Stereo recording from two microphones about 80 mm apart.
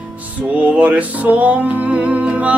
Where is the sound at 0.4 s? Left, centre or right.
Centre.